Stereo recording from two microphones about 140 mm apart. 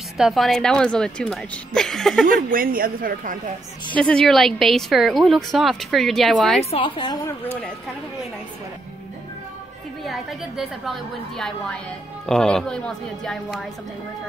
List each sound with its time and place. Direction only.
0.2 s a woman's voice: centre (ahead or behind)
2.2 s a woman's voice: 90° right
3.9 s a woman's voice: 5° left (ahead or behind)
6.6 s a woman's voice: 40° left (ahead or behind)
10.0 s a woman's voice: centre (ahead or behind)